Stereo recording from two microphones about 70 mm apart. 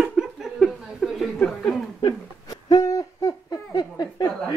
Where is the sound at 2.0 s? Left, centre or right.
Left.